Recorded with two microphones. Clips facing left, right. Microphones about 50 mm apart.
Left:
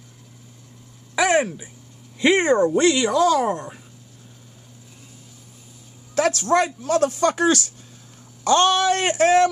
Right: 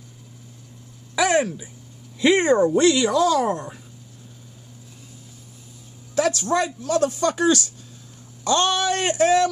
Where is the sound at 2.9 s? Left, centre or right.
Centre.